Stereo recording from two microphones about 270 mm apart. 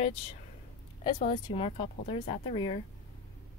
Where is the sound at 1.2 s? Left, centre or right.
Left.